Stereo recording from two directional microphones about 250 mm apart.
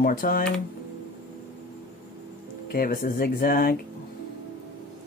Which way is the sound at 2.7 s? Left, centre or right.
Left.